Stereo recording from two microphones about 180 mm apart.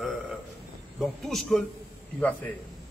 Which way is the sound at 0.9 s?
Centre (ahead or behind).